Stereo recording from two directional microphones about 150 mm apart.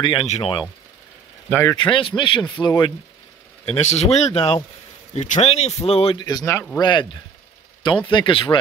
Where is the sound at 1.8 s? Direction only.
35° left (ahead or behind).